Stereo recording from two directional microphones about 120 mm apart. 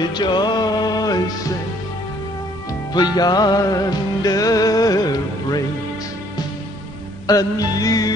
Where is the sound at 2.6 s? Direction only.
35° left (ahead or behind).